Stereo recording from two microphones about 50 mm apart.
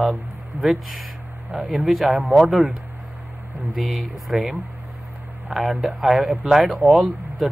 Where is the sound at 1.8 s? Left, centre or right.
Centre.